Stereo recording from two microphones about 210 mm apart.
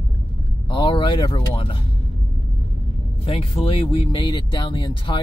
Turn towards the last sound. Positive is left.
turn(degrees=20)  # may be behind; listen again after turning